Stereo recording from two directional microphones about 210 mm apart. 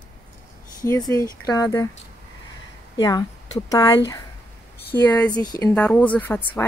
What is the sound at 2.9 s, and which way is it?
Speech, 15° left (ahead or behind).